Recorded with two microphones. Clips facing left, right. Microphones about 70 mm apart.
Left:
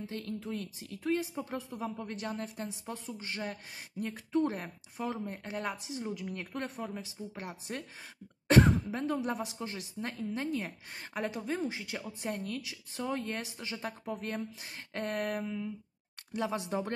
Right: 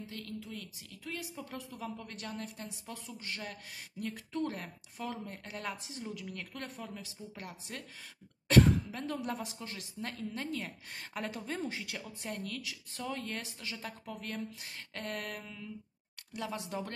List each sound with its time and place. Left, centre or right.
0.1 s speech: left
1.3 s a woman's voice: left; by 12.3 s centre
12.3 s speech: left